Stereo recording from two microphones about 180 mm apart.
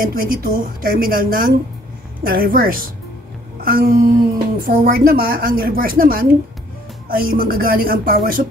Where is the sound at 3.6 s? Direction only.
55° right (ahead or behind).